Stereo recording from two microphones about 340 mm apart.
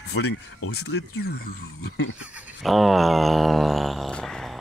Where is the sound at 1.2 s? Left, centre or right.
Left.